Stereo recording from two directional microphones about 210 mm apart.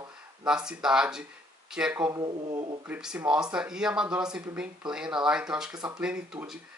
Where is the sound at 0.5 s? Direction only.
5° right (ahead or behind).